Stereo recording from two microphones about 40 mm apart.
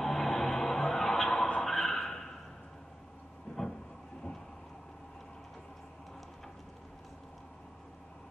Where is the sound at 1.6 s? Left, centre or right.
Centre.